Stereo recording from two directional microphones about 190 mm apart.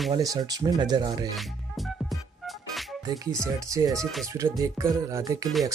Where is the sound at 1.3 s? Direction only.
Centre (ahead or behind).